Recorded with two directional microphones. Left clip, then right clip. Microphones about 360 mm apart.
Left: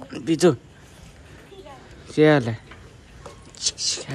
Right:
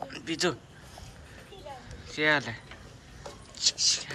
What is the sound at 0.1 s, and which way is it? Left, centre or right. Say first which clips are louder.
Speech: left 12 dB; centre.